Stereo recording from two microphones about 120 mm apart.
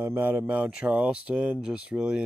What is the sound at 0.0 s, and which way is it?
Speech, 15° right (ahead or behind).